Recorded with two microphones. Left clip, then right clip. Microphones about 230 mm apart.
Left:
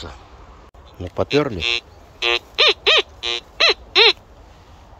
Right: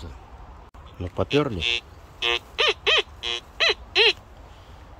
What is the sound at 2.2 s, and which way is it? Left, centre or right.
Bird, left.